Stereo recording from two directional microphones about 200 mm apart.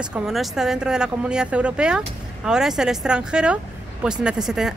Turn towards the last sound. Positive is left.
turn(degrees=-5)  # may be behind; listen again after turning